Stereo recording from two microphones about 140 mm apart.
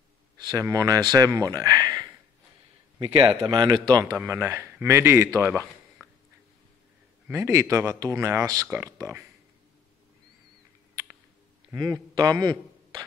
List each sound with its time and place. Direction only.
0.4 s speech: 25° right (ahead or behind)
3.0 s speech: 40° right (ahead or behind)
4.0 s speech: 20° right (ahead or behind)
7.2 s speech: 20° right (ahead or behind)
11.7 s a man's voice: 25° right (ahead or behind)